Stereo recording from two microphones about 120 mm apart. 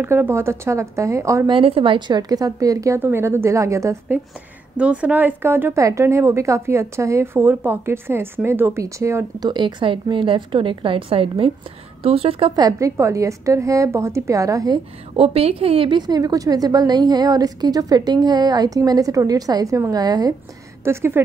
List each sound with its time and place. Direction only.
0.0 s a woman's voice: 20° right (ahead or behind)
1.5 s a woman's voice: 50° right (ahead or behind); by 4.2 s 25° right (ahead or behind)
4.7 s a woman's voice: 10° right (ahead or behind)
9.5 s a woman's voice: 40° right (ahead or behind)
12.5 s a woman's voice: 30° right (ahead or behind)
15.1 s a woman's voice: 55° right (ahead or behind)
16.0 s a woman's voice: 35° right (ahead or behind)
20.8 s a woman's voice: 20° right (ahead or behind)